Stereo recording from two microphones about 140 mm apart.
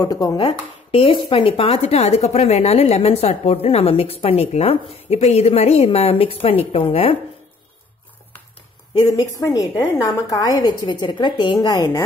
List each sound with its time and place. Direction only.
0.0 s a woman's voice: 25° left (ahead or behind)
0.4 s speech: 45° left (ahead or behind)
9.1 s a woman's voice: 25° left (ahead or behind)